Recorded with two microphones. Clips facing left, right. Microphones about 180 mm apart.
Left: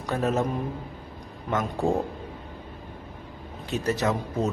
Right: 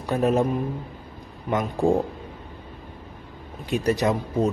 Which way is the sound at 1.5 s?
15° right (ahead or behind).